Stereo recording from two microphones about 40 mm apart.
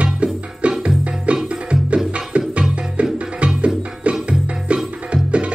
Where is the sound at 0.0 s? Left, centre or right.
Right.